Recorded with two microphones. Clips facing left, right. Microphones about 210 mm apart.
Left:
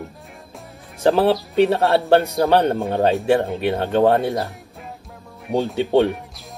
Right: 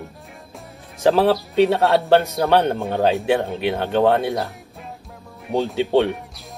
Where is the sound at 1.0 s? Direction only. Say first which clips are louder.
Even; centre (ahead or behind).